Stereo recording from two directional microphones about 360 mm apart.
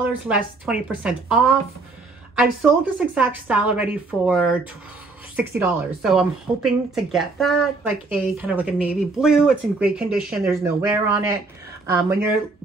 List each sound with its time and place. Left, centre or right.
0.0 s a woman's voice: centre